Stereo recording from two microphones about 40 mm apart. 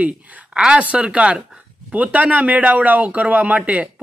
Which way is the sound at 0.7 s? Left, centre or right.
Right.